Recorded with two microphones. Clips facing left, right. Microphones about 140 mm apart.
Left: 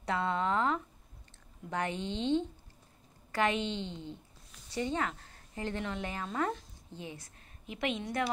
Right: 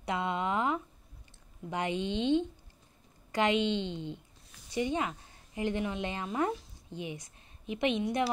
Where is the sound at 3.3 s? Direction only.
20° right (ahead or behind).